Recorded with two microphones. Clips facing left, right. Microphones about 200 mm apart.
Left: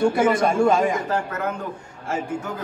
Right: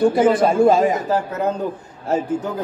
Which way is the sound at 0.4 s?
5° right (ahead or behind).